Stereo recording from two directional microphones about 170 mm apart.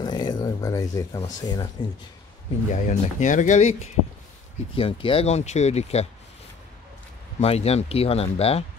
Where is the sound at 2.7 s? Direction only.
45° left (ahead or behind).